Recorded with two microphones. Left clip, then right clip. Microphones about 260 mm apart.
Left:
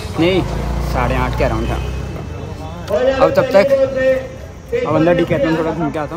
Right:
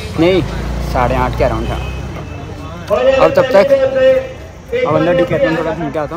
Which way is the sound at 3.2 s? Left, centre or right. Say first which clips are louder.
Even; centre.